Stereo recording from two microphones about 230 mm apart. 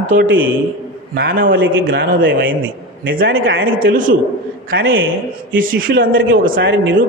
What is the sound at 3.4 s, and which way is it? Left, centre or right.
Speech, right.